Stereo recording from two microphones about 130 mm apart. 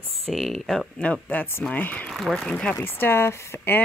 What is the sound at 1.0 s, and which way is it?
Speech, 10° left (ahead or behind).